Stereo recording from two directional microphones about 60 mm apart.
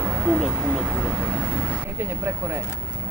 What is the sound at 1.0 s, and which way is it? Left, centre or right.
Speech, right.